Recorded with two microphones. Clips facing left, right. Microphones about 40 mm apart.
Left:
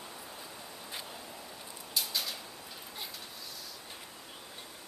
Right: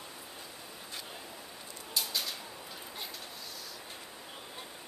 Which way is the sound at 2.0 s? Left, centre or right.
Centre.